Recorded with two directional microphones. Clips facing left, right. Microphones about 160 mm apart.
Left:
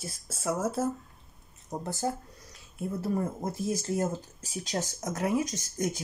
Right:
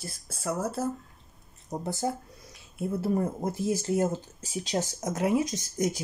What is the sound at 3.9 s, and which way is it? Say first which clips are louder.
Speech: right 3 dB; 20° right (ahead or behind).